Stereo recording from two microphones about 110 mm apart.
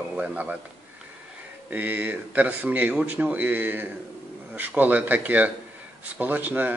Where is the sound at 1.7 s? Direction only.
15° right (ahead or behind).